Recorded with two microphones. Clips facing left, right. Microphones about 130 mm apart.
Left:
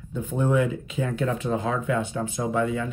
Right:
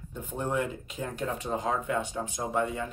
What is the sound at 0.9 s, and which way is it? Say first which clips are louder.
Speech: left 7 dB; 90° left.